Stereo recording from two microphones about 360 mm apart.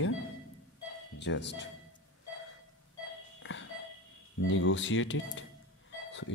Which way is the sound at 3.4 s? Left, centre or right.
Left.